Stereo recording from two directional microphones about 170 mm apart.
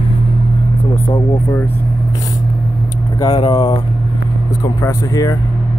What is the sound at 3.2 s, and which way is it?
Speech, 25° left (ahead or behind).